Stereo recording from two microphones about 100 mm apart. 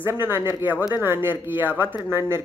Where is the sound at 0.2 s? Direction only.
25° right (ahead or behind).